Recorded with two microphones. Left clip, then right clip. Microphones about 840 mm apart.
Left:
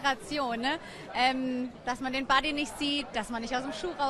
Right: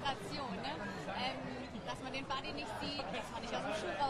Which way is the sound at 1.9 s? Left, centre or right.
Left.